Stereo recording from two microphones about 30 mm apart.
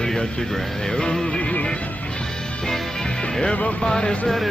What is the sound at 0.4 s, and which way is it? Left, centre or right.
Speech, left.